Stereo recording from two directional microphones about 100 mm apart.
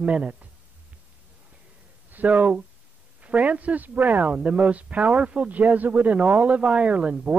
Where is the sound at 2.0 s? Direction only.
15° right (ahead or behind).